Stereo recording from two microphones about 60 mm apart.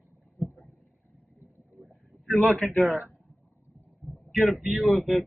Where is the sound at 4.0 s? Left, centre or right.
Centre.